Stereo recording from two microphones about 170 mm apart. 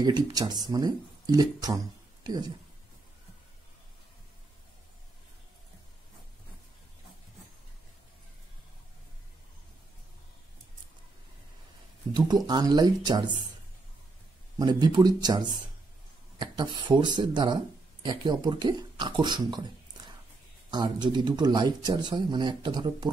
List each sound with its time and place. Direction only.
0.0 s speech: 25° right (ahead or behind)
12.1 s speech: 25° right (ahead or behind)
14.6 s speech: 25° right (ahead or behind)
20.7 s speech: 25° right (ahead or behind)